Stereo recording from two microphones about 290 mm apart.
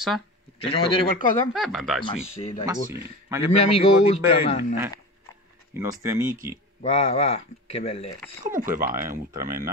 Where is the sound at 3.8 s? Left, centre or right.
Left.